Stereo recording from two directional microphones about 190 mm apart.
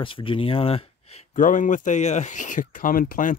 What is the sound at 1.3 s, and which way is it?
Speech, 45° left (ahead or behind).